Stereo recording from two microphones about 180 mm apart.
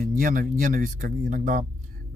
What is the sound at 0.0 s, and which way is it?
Speech, 50° right (ahead or behind).